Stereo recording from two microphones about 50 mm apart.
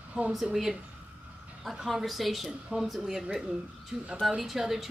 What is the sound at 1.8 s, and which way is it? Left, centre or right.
Speech, centre.